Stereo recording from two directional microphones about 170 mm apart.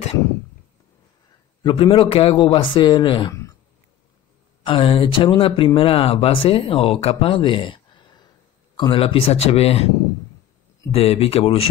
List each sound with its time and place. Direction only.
1.6 s speech: 30° left (ahead or behind)
4.6 s a man's voice: 30° left (ahead or behind)
10.9 s a man's voice: 35° left (ahead or behind)